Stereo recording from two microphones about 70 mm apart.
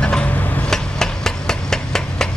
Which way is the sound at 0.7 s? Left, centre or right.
Centre.